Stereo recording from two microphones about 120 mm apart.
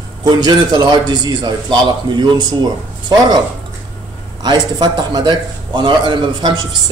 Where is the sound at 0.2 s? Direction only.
35° right (ahead or behind).